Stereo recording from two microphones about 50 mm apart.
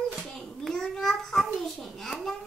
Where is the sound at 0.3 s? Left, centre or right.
Centre.